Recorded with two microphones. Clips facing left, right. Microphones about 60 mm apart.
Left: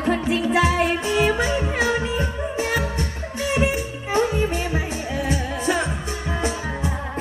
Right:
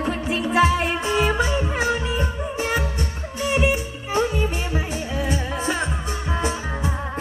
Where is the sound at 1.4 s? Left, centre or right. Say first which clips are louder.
Even; left.